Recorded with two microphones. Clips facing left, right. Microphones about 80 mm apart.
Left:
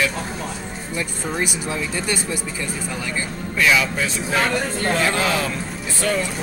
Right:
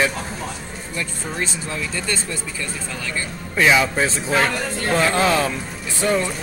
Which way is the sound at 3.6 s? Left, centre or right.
Right.